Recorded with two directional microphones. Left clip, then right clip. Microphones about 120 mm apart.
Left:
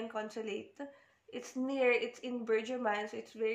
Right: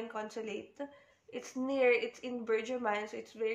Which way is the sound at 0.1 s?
10° left (ahead or behind).